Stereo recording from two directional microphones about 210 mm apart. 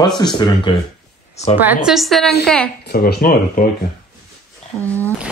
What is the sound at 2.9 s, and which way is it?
Speech, 45° left (ahead or behind).